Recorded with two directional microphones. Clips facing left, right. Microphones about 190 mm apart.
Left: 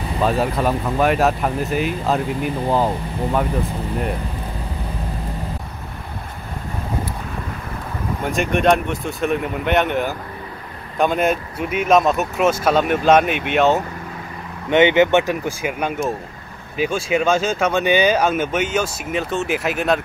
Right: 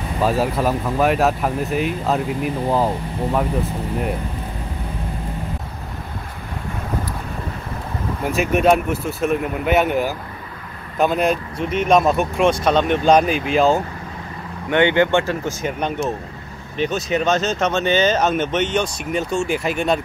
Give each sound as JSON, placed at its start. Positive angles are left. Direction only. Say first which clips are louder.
{"t": 0.2, "sound": "speech", "louder": "even", "side_deg": 0}
{"t": 8.3, "sound": "speech", "louder": "right 1 dB", "side_deg": -5}
{"t": 14.7, "sound": "speech", "louder": "left 2 dB", "side_deg": 20}